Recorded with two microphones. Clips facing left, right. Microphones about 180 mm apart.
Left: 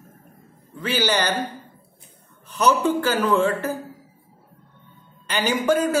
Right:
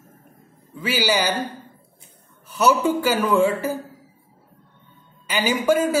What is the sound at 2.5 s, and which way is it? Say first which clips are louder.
A woman's voice: right 1 dB; 10° right (ahead or behind).